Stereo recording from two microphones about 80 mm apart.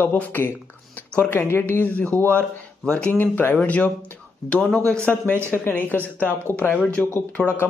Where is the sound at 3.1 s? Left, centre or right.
Left.